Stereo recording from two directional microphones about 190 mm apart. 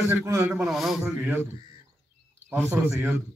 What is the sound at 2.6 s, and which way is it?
Speech, 10° right (ahead or behind).